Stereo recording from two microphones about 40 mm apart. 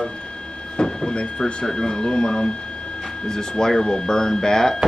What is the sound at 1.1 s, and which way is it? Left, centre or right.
Speech, left.